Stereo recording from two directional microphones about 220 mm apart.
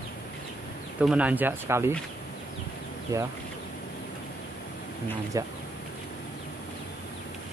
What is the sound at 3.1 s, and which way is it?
Speech, 15° right (ahead or behind).